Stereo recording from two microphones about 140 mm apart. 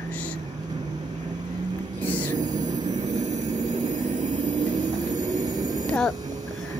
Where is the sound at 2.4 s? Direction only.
60° right (ahead or behind).